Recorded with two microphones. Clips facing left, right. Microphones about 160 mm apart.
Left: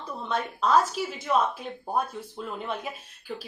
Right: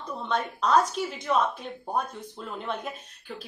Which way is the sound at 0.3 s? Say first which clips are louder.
Even; 5° left (ahead or behind).